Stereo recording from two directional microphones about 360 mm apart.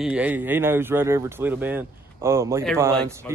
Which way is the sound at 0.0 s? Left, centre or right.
Centre.